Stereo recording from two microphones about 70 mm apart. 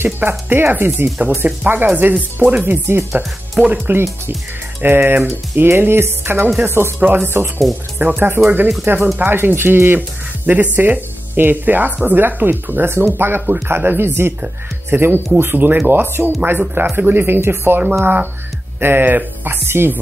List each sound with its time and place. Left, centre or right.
0.0 s speech: right